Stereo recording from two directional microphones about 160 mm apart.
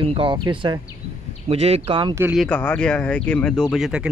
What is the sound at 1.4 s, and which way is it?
Speech, 40° right (ahead or behind).